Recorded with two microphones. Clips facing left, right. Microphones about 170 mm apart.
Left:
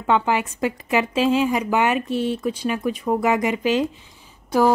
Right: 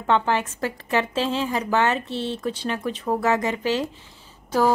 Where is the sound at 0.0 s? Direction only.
10° left (ahead or behind).